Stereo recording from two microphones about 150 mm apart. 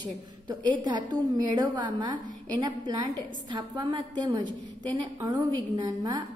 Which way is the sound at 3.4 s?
30° right (ahead or behind).